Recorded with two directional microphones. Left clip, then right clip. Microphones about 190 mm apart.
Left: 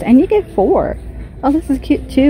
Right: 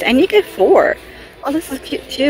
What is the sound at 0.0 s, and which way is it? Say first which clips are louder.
Speech: even; 5° right (ahead or behind).